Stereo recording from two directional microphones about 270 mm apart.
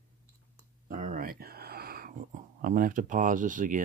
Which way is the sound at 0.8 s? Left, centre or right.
Right.